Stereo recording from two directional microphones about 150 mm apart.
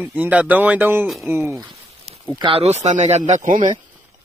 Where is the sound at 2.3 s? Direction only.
35° right (ahead or behind).